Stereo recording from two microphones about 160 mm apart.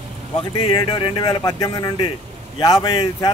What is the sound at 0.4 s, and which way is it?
A man's voice, 30° left (ahead or behind).